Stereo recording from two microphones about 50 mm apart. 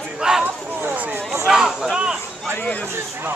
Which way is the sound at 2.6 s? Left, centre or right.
Left.